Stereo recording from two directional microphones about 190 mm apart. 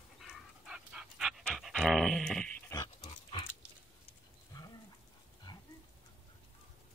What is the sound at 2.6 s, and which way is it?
Dog, 20° left (ahead or behind).